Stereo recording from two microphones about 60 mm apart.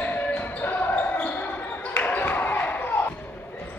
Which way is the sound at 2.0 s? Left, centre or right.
Left.